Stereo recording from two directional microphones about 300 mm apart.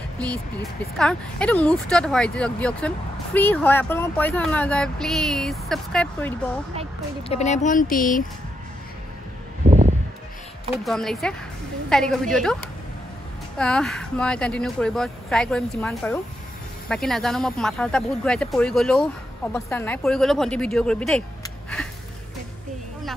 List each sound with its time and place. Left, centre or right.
0.3 s speech: centre
7.2 s speech: left
9.7 s a sound: right
10.7 s speech: centre
13.6 s speech: centre
21.4 s a sound: centre